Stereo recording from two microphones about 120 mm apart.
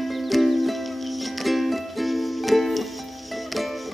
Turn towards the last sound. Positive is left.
turn(degrees=0)  # may be behind; listen again after turning